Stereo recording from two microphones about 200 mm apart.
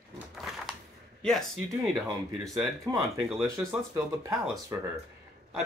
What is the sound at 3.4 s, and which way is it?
Speech, 15° right (ahead or behind).